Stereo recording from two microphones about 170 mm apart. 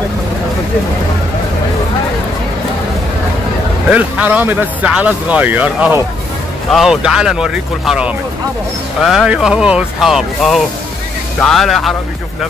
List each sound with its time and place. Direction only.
3.9 s speech: 10° right (ahead or behind)